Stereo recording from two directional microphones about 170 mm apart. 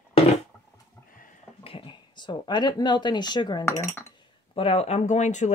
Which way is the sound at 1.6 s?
30° left (ahead or behind).